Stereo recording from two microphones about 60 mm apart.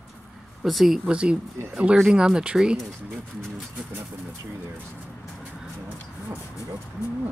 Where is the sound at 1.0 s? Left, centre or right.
Centre.